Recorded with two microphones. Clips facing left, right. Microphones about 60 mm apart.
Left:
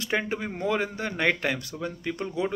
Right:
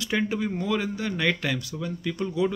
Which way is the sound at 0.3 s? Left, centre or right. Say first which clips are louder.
Right 1 dB; left.